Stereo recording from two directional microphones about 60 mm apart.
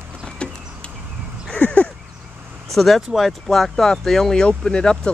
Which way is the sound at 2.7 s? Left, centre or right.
Centre.